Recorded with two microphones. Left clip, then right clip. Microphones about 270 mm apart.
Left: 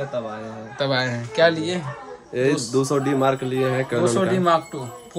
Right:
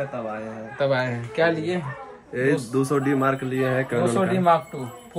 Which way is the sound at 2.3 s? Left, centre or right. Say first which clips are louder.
Left 2 dB; centre.